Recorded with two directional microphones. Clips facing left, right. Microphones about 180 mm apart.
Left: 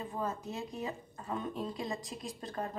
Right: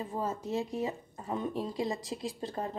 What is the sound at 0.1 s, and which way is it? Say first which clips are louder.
Speech: right 6 dB; 25° right (ahead or behind).